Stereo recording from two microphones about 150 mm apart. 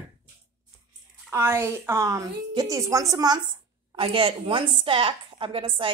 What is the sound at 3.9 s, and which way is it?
A woman's voice, 35° right (ahead or behind).